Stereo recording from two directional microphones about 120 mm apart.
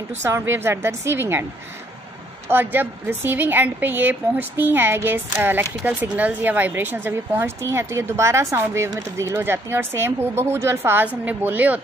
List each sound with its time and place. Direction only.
0.2 s speech: 20° right (ahead or behind)
2.4 s a woman's voice: 15° right (ahead or behind)